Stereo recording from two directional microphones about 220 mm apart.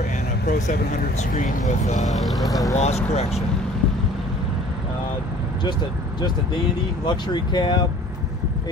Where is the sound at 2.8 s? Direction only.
30° left (ahead or behind).